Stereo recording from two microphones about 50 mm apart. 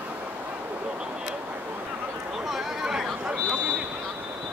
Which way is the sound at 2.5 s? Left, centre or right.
Centre.